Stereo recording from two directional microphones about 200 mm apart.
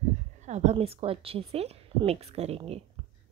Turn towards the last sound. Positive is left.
turn(degrees=-30)  # may be behind; listen again after turning